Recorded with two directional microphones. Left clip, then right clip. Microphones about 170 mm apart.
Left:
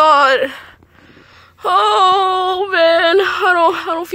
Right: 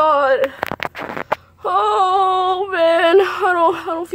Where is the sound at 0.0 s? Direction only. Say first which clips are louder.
Left 4 dB; 10° left (ahead or behind).